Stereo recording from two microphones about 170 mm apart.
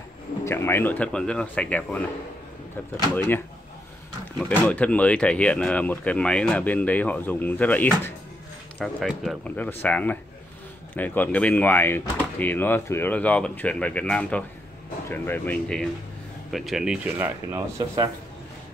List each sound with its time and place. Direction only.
0.5 s speech: 15° left (ahead or behind)
3.2 s speech: 15° left (ahead or behind)
9.6 s speech: 10° left (ahead or behind)
17.2 s speech: 20° right (ahead or behind)